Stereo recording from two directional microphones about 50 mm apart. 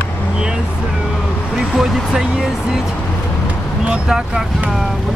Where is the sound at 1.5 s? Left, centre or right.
Centre.